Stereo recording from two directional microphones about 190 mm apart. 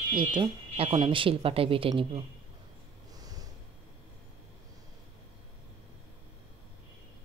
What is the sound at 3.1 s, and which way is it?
Snort, 20° right (ahead or behind).